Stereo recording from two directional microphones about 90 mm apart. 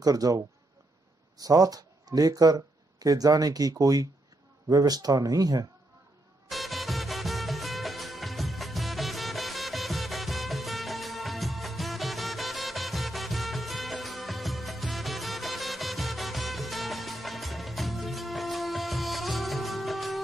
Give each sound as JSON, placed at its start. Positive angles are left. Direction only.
{"t": 0.0, "sound": "speech", "side_deg": -40}
{"t": 6.5, "sound": "music", "side_deg": 0}